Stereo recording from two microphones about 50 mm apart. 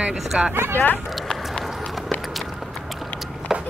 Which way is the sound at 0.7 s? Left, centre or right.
Left.